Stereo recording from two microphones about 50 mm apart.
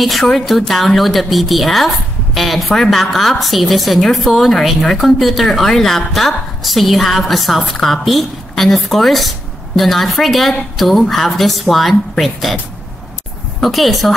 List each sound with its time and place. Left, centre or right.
0.0 s a woman's voice: centre
13.6 s a woman's voice: centre